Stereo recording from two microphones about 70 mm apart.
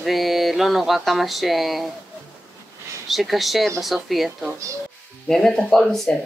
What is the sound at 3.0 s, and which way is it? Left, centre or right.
Speech, centre.